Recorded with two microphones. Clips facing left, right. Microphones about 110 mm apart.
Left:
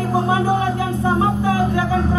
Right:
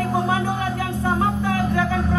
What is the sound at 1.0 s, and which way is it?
Music, 15° left (ahead or behind).